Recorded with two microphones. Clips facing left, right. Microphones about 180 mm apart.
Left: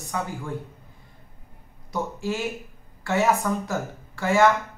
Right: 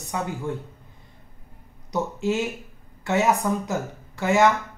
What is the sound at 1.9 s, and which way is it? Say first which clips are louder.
A woman's voice: right 3 dB; 20° right (ahead or behind).